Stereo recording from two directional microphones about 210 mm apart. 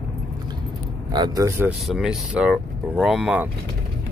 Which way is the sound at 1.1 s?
15° right (ahead or behind).